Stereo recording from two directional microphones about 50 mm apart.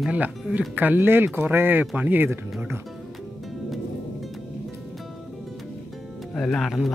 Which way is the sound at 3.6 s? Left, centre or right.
Centre.